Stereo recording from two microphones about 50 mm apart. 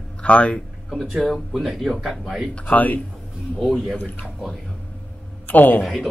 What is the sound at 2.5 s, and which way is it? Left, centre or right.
Speech, left.